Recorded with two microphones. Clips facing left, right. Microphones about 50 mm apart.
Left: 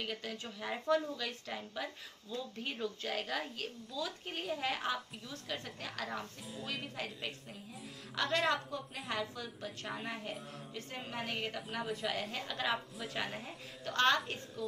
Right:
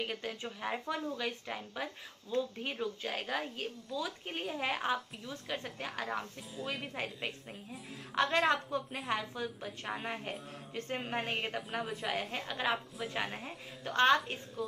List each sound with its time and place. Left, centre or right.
0.0 s a woman's voice: right
9.4 s speech: centre
10.7 s a woman's voice: right; by 14.4 s centre